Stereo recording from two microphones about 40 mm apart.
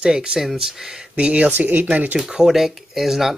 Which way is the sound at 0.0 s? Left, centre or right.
Right.